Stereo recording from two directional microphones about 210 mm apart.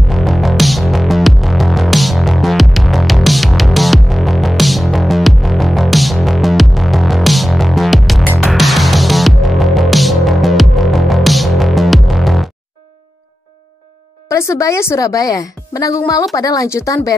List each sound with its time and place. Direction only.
0.1 s music: centre (ahead or behind)
14.3 s a woman's voice: 15° left (ahead or behind)